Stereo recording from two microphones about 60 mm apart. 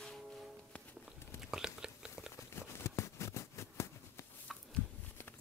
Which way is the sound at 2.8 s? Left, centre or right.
Left.